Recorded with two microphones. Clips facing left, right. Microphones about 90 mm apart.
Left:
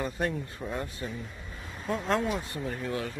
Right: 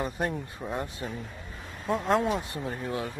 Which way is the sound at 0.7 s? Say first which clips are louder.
Right 2 dB; 25° right (ahead or behind).